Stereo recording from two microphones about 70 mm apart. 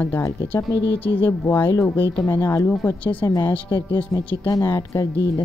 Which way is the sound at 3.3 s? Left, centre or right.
Left.